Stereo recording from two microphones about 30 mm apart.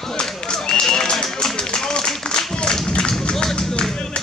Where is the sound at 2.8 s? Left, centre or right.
Left.